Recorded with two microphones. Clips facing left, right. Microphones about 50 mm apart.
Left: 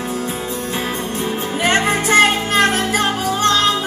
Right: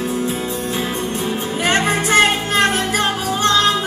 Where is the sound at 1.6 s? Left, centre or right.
Left.